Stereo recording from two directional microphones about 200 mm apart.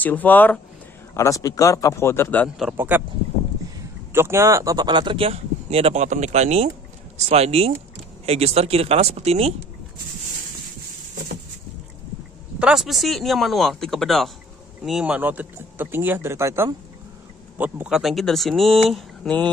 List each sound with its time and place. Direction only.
0.0 s a man's voice: 10° left (ahead or behind)
2.6 s speech: 10° right (ahead or behind)
4.1 s speech: 10° right (ahead or behind); by 9.7 s 30° right (ahead or behind)
12.5 s speech: 5° right (ahead or behind)